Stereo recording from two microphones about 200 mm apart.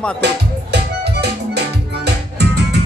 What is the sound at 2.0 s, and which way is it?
Music, 55° right (ahead or behind).